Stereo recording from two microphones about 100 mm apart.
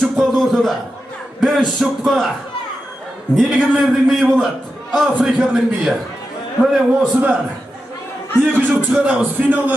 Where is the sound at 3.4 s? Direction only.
Centre (ahead or behind); by 7.4 s 15° right (ahead or behind).